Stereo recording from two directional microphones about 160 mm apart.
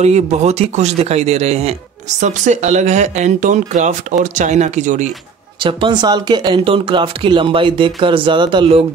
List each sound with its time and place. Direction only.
0.0 s speech: 45° right (ahead or behind)
5.6 s speech: 30° right (ahead or behind)